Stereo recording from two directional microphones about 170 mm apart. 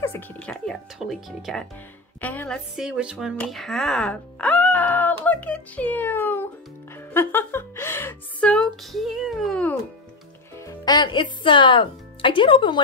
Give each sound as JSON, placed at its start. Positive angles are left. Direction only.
{"t": 0.0, "sound": "a woman's voice", "side_deg": 10}
{"t": 2.7, "sound": "speech", "side_deg": -5}
{"t": 7.2, "sound": "a sound", "side_deg": 15}
{"t": 10.6, "sound": "speech", "side_deg": 20}